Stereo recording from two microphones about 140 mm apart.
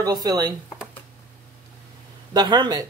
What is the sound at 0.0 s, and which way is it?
Speech, 30° right (ahead or behind).